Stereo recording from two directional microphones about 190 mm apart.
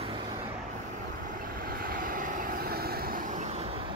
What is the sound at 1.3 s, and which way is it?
Vehicle, 45° right (ahead or behind).